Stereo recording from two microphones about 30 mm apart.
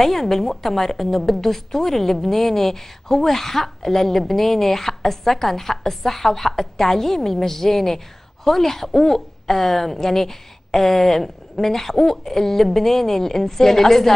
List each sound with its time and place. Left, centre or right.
0.0 s a woman's voice: centre